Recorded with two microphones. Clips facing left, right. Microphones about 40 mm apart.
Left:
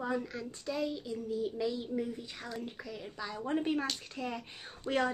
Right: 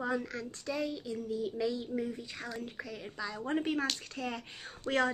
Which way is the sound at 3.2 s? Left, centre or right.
Centre.